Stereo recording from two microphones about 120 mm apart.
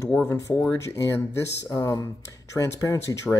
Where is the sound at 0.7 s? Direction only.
25° left (ahead or behind).